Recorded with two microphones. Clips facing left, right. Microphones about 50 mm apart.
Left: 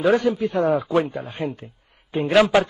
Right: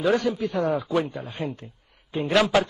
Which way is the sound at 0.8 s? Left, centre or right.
Left.